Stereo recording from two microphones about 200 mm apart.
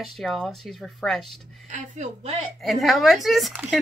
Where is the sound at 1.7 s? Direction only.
35° right (ahead or behind).